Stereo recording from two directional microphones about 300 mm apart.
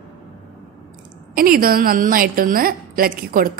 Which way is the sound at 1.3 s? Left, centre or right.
Right.